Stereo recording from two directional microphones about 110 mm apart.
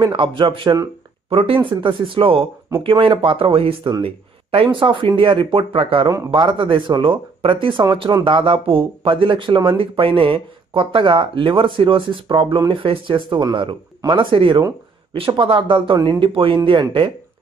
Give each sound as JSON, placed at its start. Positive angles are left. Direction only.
{"t": 0.0, "sound": "speech", "side_deg": -50}
{"t": 6.0, "sound": "a man's voice", "side_deg": -30}
{"t": 6.3, "sound": "speech", "side_deg": -45}